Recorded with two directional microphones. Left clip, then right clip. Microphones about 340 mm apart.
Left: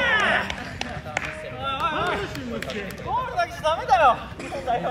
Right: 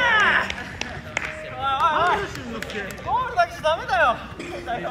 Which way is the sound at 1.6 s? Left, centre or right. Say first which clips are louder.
Right 6 dB; centre.